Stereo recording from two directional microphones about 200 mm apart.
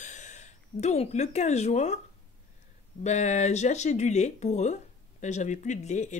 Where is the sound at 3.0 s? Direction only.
35° left (ahead or behind).